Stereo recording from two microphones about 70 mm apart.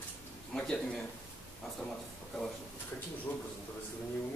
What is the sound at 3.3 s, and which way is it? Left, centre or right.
Speech, left.